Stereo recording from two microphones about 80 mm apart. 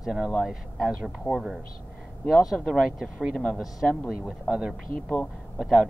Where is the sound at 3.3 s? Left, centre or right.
Centre.